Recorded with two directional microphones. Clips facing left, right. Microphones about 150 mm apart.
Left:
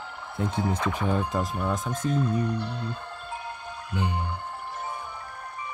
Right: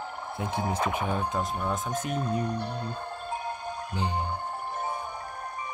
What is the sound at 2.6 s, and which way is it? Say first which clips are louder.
Music: left 1 dB; 55° right (ahead or behind).